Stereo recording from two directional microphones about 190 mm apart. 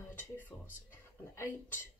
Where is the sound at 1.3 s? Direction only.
15° left (ahead or behind).